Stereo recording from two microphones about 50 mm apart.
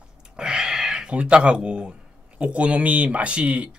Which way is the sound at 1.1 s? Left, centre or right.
Right.